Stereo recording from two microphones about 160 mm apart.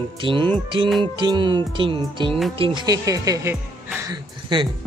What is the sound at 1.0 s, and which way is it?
Music, 25° right (ahead or behind).